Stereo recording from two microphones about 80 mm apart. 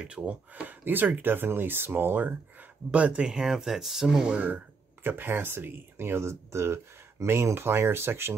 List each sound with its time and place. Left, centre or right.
0.0 s speech: centre
5.0 s speech: right